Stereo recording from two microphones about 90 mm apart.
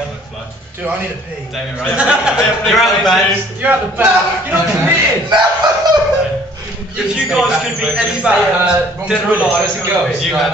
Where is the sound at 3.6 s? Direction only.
15° right (ahead or behind).